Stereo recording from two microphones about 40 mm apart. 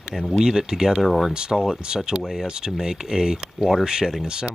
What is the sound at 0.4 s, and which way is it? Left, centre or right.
Speech, centre.